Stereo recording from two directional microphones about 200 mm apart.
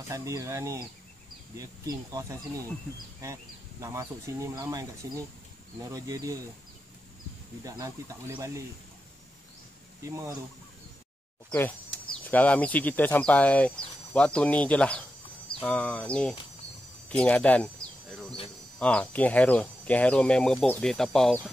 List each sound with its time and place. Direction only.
0.1 s speech: 15° right (ahead or behind)
3.8 s speech: 15° right (ahead or behind)
7.6 s speech: 15° right (ahead or behind)
10.0 s speech: 15° right (ahead or behind)
12.3 s speech: 5° left (ahead or behind)
18.8 s speech: 5° left (ahead or behind)